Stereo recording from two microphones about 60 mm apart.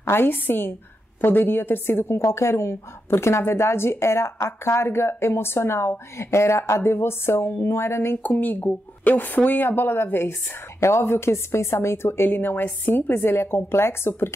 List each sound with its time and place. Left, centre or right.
0.0 s a woman's voice: left
8.2 s a woman's voice: left
12.3 s a woman's voice: left